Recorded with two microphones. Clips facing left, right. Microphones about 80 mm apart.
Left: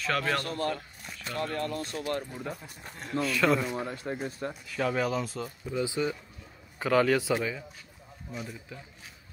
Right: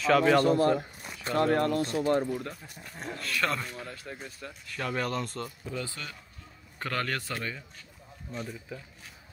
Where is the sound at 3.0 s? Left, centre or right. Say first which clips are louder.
Left 4 dB; centre.